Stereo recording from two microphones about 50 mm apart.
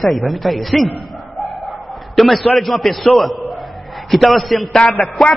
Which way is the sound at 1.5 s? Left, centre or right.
Centre.